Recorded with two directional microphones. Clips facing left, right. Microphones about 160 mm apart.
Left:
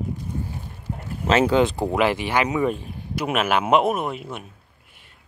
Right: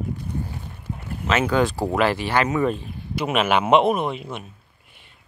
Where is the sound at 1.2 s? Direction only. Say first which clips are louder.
Left 3 dB; 35° left (ahead or behind).